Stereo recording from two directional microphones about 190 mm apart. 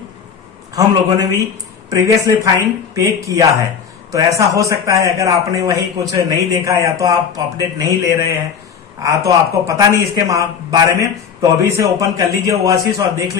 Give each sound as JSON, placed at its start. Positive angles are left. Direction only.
{"t": 0.7, "sound": "a man's voice", "side_deg": -20}